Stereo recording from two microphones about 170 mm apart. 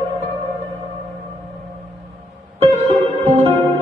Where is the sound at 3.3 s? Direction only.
35° right (ahead or behind).